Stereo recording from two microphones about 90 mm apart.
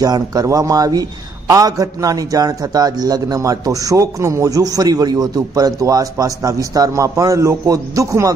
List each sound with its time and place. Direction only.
0.0 s a man's voice: 45° right (ahead or behind)